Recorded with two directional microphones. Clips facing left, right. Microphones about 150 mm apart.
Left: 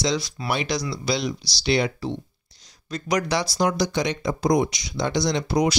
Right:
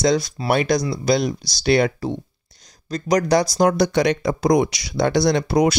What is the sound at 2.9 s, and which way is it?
Speech, 40° right (ahead or behind).